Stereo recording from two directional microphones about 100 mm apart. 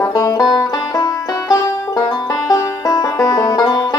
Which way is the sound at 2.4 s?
40° left (ahead or behind).